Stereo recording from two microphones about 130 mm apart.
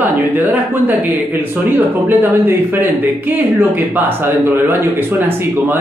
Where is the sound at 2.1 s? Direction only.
15° right (ahead or behind).